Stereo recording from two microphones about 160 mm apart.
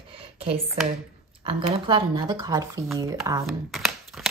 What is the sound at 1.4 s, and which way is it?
Speech, 30° right (ahead or behind).